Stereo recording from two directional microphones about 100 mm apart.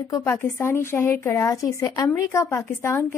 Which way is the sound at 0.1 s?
25° left (ahead or behind).